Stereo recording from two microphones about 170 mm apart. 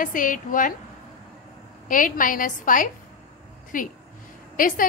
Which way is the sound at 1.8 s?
55° left (ahead or behind).